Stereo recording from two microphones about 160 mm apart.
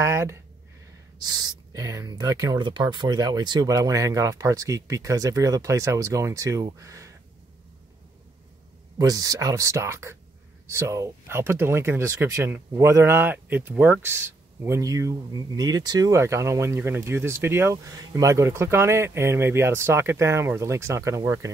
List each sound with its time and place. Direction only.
0.0 s speech: 15° right (ahead or behind)
8.9 s speech: 25° right (ahead or behind)